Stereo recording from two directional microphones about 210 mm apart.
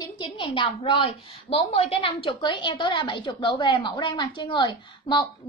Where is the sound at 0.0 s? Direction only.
20° left (ahead or behind).